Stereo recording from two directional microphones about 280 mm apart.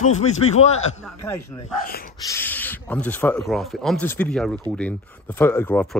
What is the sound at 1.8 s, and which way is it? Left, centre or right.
Speech, left.